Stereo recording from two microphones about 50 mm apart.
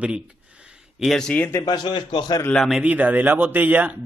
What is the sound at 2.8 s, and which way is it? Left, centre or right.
Speech, right.